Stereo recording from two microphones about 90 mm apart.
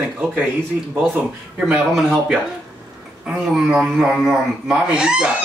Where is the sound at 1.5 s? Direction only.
10° right (ahead or behind).